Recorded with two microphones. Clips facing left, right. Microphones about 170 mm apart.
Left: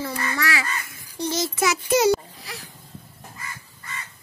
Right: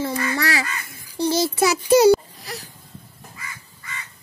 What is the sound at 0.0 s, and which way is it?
Honk, 35° right (ahead or behind).